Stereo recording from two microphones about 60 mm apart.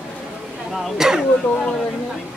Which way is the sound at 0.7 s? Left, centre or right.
Centre.